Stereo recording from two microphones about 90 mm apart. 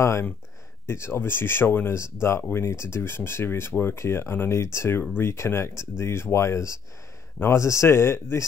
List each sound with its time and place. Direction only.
0.0 s speech: 30° left (ahead or behind)